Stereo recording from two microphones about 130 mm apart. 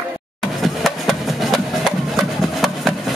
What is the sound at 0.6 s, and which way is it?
Music, centre (ahead or behind).